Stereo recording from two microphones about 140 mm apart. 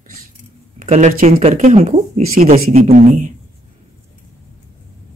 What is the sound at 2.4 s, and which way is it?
Speech, 55° right (ahead or behind).